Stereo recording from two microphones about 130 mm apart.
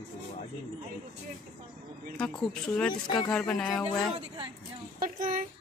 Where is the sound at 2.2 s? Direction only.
10° left (ahead or behind).